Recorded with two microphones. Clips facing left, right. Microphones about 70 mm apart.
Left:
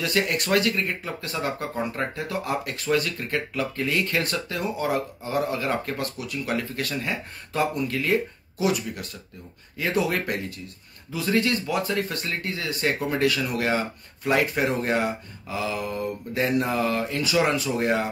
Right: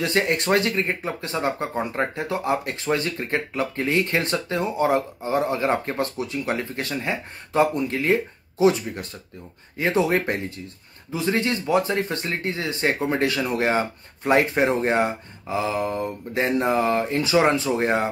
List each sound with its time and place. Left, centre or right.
0.0 s speech: right